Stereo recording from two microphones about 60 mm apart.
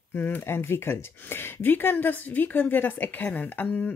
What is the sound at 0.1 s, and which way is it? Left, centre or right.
Speech, left.